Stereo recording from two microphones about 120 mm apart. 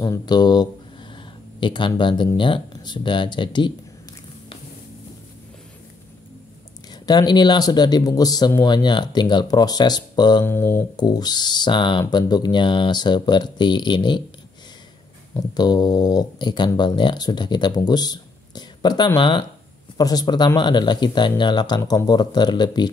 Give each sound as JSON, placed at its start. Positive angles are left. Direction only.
{"t": 0.0, "sound": "speech", "side_deg": 35}
{"t": 1.1, "sound": "a sound", "side_deg": 40}
{"t": 2.3, "sound": "speech", "side_deg": 45}
{"t": 6.9, "sound": "speech", "side_deg": 35}
{"t": 10.4, "sound": "speech", "side_deg": 20}
{"t": 11.0, "sound": "speech", "side_deg": 35}
{"t": 15.3, "sound": "speech", "side_deg": 35}